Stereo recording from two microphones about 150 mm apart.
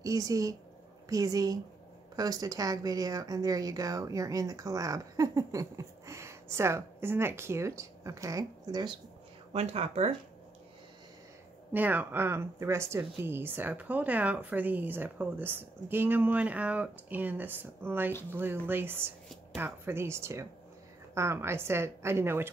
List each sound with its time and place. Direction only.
0.0 s speech: 25° right (ahead or behind)
9.5 s speech: 45° right (ahead or behind)
11.7 s speech: 10° right (ahead or behind)